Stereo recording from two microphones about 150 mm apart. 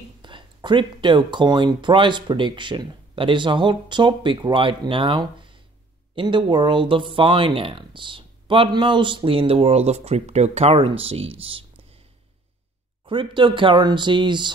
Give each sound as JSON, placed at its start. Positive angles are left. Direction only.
{"t": 0.2, "sound": "speech", "side_deg": -30}
{"t": 13.0, "sound": "speech", "side_deg": -35}